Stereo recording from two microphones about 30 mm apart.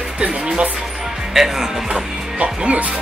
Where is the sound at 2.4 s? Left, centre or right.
Right.